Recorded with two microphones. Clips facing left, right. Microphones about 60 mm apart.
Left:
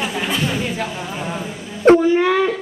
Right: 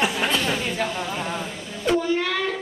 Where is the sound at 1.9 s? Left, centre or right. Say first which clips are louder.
Left 8 dB; left.